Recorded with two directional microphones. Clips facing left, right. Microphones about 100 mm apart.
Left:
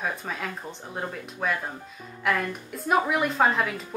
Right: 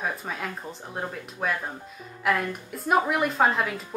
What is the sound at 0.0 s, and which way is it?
Speech, centre (ahead or behind).